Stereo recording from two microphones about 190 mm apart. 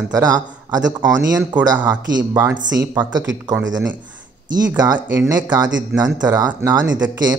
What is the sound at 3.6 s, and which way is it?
Speech, 75° right (ahead or behind).